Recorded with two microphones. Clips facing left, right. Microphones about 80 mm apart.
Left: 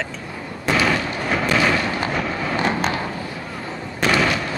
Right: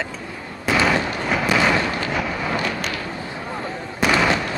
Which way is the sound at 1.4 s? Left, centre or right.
Centre.